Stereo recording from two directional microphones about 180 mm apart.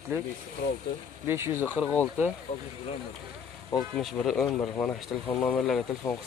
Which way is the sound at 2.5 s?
35° left (ahead or behind).